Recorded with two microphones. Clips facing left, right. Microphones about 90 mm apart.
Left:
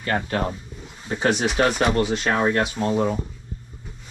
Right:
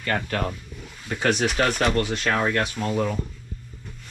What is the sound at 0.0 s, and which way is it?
Speech, 25° left (ahead or behind).